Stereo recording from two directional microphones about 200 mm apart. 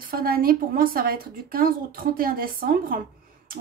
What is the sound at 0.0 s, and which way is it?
A woman's voice, 45° right (ahead or behind).